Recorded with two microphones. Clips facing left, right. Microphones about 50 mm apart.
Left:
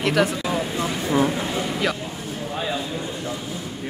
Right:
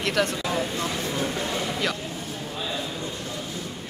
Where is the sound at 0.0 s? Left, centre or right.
Centre.